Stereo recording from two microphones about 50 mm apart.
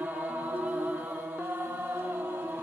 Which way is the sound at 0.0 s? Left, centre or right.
Right.